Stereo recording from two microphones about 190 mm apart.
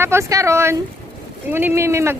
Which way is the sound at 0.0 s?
15° right (ahead or behind).